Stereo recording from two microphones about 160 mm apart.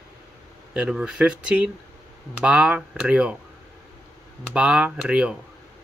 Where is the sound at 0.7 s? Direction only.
5° right (ahead or behind).